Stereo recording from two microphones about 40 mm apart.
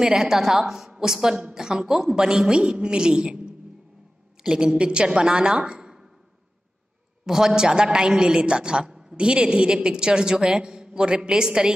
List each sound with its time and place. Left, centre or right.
0.0 s a woman's voice: centre
7.2 s a woman's voice: centre